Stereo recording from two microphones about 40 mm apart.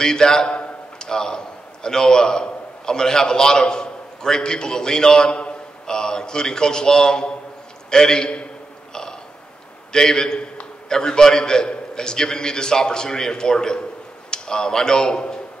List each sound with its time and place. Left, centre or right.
0.0 s a man's voice: centre
5.3 s a sound: left
5.9 s a man's voice: centre
9.9 s a man's voice: centre